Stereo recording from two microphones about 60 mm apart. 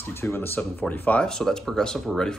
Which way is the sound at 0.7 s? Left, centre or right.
Left.